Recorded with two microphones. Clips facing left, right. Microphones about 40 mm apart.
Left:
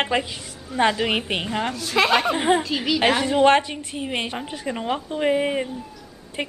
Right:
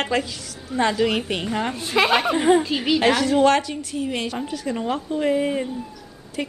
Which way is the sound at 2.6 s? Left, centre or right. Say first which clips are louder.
Right 2 dB; centre.